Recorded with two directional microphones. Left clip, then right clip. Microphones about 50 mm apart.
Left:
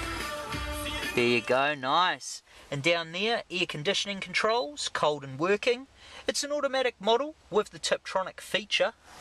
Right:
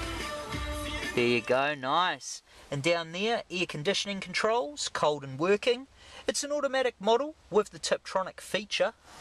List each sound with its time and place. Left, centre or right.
0.0 s music: centre
0.3 s music: left
1.1 s speech: centre
2.7 s speech: right